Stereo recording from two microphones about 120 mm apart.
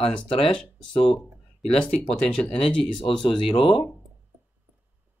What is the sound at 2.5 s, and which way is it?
Speech, 50° left (ahead or behind).